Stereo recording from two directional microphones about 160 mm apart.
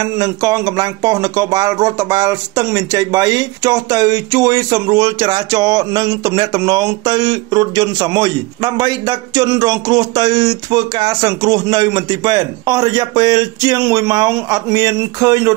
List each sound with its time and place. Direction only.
0.0 s speech: 25° right (ahead or behind)